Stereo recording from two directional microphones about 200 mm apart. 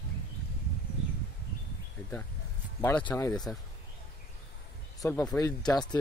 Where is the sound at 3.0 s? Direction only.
15° left (ahead or behind).